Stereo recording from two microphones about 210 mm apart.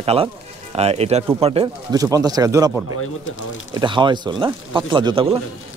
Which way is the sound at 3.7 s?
20° right (ahead or behind).